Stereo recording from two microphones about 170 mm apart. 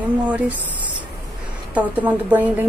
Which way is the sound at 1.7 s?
10° right (ahead or behind).